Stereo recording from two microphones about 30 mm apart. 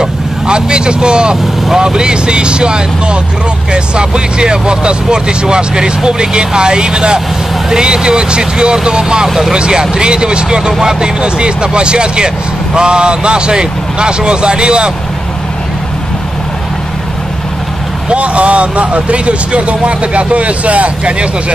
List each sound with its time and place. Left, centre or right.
0.0 s vehicle: right
1.8 s speech: right
18.1 s speech: right